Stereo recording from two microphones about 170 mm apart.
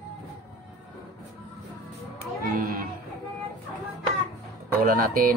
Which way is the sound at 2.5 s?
55° right (ahead or behind).